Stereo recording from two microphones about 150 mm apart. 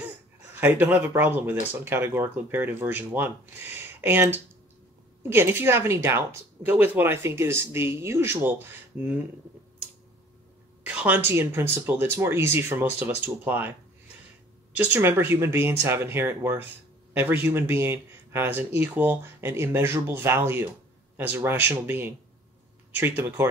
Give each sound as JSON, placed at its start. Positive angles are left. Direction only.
{"t": 0.6, "sound": "speech", "side_deg": -10}
{"t": 11.0, "sound": "speech", "side_deg": -10}